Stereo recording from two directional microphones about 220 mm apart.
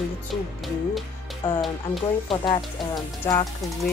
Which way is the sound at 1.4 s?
20° left (ahead or behind).